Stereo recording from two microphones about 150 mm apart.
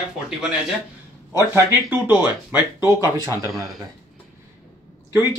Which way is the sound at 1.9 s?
15° right (ahead or behind).